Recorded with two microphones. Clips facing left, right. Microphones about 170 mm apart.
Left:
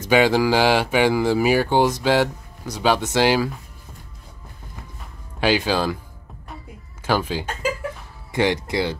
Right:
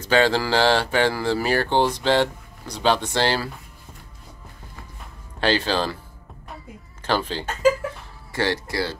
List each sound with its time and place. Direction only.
0.1 s speech: 10° left (ahead or behind)
5.4 s speech: 10° left (ahead or behind)
7.0 s speech: 10° left (ahead or behind)